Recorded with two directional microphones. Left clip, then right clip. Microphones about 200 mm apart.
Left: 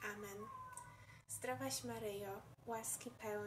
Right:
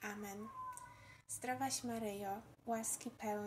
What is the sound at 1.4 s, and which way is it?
Speech, 35° right (ahead or behind).